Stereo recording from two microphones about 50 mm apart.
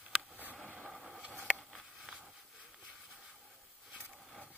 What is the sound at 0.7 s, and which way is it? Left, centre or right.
Vehicle, centre.